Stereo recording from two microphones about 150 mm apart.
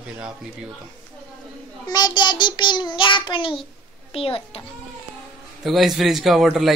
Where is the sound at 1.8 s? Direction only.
25° left (ahead or behind).